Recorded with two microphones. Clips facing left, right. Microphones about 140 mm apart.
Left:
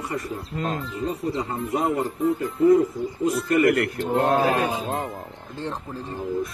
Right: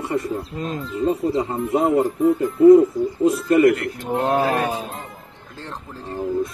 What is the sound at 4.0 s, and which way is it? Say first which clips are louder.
Speech: even; 15° right (ahead or behind).